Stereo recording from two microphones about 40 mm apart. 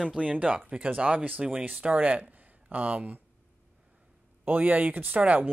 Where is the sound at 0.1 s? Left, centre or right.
Right.